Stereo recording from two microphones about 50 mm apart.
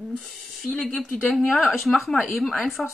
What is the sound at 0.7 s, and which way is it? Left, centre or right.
Speech, left.